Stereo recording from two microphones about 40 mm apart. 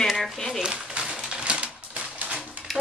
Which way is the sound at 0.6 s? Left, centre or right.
Right.